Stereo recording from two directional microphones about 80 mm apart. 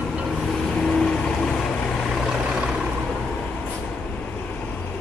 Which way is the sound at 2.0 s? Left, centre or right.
Centre.